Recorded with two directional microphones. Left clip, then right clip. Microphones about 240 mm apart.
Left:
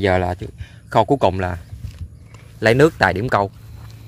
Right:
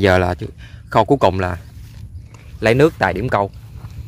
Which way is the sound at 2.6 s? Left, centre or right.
Centre.